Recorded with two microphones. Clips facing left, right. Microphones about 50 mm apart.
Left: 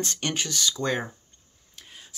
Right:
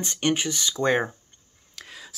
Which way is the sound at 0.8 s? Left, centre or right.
Right.